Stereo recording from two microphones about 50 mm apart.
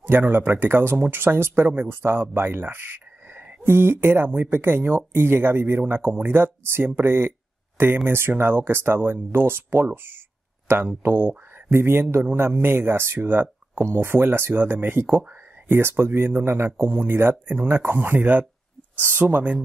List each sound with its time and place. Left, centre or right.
0.0 s speech: right
11.0 s speech: right